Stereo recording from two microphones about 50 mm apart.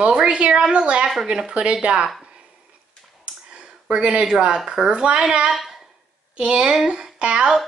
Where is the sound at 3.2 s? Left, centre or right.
Right.